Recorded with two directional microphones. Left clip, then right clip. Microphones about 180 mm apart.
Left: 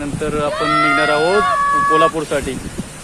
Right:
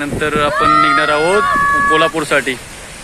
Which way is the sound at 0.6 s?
25° right (ahead or behind).